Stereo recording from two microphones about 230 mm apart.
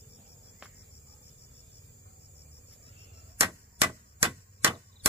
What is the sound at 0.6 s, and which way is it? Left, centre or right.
Cricket, centre.